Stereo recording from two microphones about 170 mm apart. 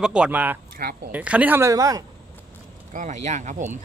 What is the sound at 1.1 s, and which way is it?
Speech, 10° right (ahead or behind).